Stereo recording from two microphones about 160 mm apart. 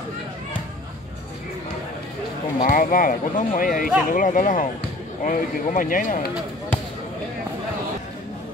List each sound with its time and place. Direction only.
2.6 s speech: 60° left (ahead or behind)